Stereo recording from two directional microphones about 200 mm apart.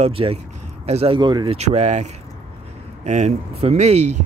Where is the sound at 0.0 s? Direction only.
30° right (ahead or behind).